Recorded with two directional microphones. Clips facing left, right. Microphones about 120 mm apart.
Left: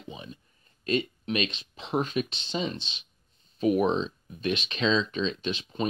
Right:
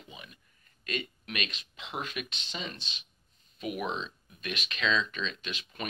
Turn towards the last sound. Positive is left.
turn(degrees=30)  # may be behind; listen again after turning